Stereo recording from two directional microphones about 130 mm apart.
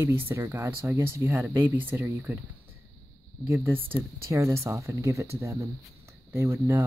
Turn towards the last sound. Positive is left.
turn(degrees=-20)  # may be behind; listen again after turning